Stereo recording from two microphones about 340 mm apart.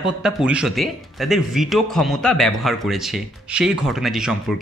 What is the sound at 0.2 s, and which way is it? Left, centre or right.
Speech, centre.